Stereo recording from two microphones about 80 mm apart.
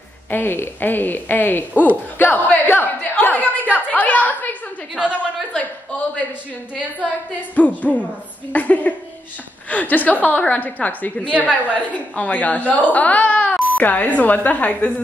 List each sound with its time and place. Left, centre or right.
0.3 s speech: left
4.9 s a woman's voice: centre
5.5 s a man's voice: centre
7.5 s speech: centre
11.2 s a woman's voice: centre
11.7 s speech: centre